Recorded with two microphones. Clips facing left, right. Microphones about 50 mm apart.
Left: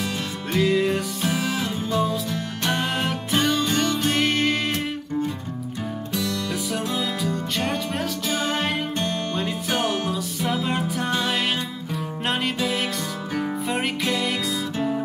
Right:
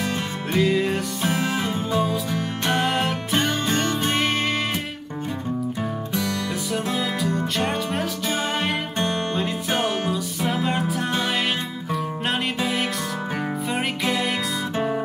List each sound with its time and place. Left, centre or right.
0.0 s music: centre
1.6 s music: right
2.7 s music: centre
3.6 s music: right
4.2 s music: centre
6.1 s music: right
6.7 s music: centre
8.9 s music: right
9.3 s music: centre
10.1 s music: centre
12.5 s music: centre